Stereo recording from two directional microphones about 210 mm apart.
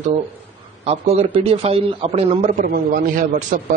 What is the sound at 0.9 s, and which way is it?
Speech, 30° right (ahead or behind).